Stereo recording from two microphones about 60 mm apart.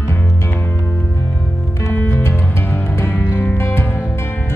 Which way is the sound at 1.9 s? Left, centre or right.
Left.